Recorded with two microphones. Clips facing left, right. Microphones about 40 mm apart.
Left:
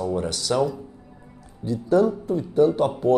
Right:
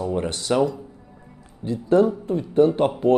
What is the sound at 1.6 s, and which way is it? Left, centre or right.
Speech, right.